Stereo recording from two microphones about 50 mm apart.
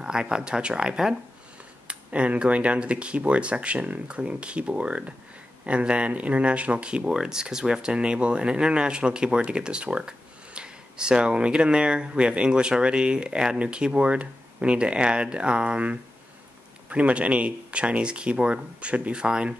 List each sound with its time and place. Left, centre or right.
0.0 s speech: centre
1.9 s speech: right